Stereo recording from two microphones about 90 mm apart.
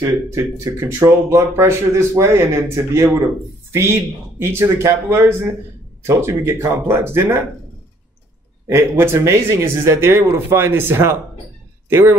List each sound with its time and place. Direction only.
0.0 s speech: 30° right (ahead or behind)
8.6 s speech: 30° right (ahead or behind)